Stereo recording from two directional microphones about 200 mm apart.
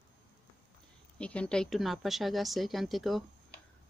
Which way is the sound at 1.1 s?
5° left (ahead or behind).